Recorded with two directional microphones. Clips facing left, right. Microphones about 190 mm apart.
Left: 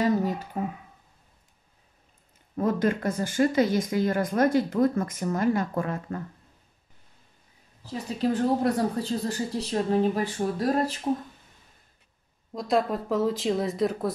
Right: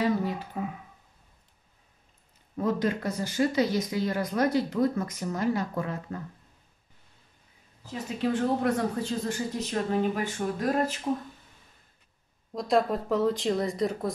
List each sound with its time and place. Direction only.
0.0 s a sound: 40° left (ahead or behind)
2.5 s speech: 50° left (ahead or behind)
7.8 s speech: 35° left (ahead or behind)
12.5 s speech: centre (ahead or behind)